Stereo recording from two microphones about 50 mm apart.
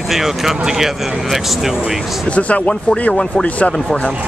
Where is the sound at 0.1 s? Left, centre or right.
Centre.